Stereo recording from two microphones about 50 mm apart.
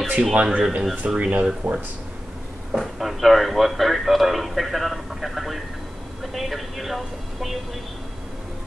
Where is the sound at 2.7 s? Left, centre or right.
Centre.